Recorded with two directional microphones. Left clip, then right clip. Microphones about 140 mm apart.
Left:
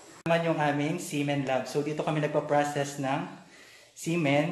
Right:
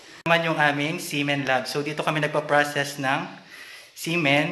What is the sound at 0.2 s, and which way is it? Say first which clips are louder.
A man's voice: right 6 dB; centre (ahead or behind).